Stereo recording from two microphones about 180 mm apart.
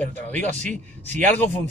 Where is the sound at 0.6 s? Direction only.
40° right (ahead or behind).